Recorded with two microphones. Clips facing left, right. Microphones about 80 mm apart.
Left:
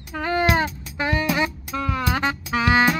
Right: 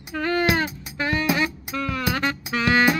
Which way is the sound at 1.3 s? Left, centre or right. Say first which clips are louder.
Left 1 dB; left.